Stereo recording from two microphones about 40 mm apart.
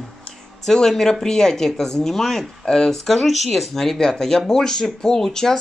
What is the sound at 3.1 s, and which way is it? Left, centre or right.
Speech, centre.